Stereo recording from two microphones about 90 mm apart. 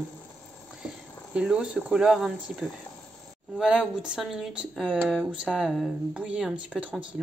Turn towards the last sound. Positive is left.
turn(degrees=-10)  # may be behind; listen again after turning